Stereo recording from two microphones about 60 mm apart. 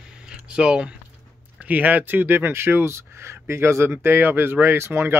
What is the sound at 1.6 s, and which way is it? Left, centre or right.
Speech, right.